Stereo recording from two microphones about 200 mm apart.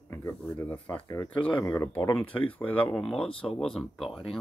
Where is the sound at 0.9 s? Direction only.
20° left (ahead or behind).